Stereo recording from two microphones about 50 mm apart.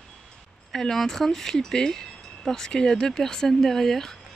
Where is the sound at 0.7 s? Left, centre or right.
Centre.